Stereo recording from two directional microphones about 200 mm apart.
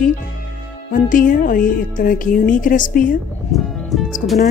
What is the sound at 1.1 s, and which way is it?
Speech, 45° left (ahead or behind).